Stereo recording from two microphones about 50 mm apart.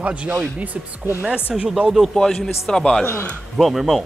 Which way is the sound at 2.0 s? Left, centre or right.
Centre.